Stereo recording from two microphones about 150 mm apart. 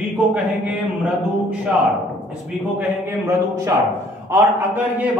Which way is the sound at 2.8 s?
20° right (ahead or behind).